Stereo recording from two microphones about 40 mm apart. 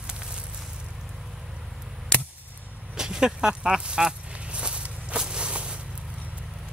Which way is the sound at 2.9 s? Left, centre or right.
Centre.